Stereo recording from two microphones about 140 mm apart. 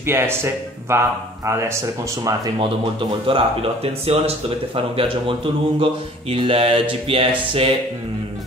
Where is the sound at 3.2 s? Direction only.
40° right (ahead or behind).